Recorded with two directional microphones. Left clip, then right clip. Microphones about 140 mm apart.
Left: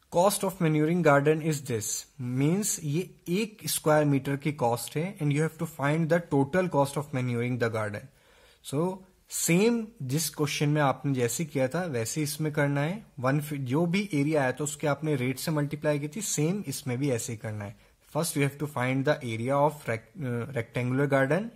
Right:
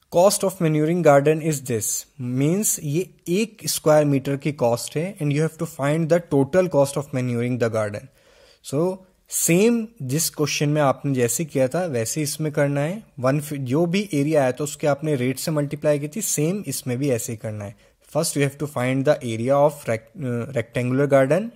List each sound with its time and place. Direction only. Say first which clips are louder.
0.1 s a man's voice: right 7 dB; 35° right (ahead or behind)